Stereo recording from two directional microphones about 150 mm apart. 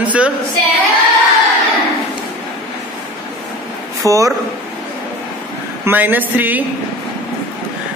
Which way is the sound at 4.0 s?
20° right (ahead or behind).